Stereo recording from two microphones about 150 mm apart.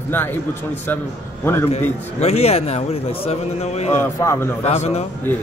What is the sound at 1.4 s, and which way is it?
Speech, 15° left (ahead or behind).